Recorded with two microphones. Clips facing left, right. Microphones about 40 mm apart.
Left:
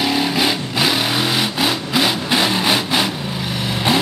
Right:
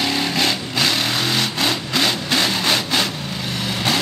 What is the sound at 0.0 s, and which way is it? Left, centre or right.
Vehicle, centre.